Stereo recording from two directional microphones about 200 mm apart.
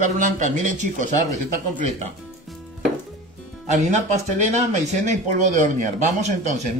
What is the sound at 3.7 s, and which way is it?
Speech, 35° right (ahead or behind).